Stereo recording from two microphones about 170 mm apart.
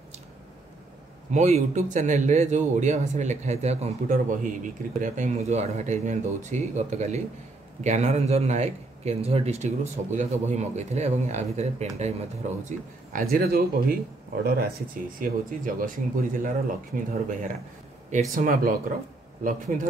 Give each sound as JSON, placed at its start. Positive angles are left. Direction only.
{"t": 1.3, "sound": "a man's voice", "side_deg": -45}
{"t": 15.1, "sound": "a man's voice", "side_deg": -55}